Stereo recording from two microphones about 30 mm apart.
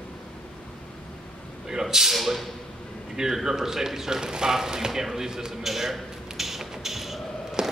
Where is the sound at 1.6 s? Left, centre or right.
Centre.